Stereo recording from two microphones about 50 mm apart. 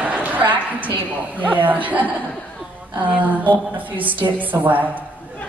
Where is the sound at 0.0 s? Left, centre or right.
Right.